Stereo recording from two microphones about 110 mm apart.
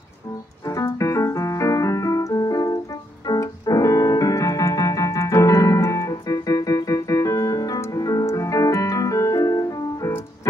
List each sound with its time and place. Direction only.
0.7 s keyboard: 30° left (ahead or behind)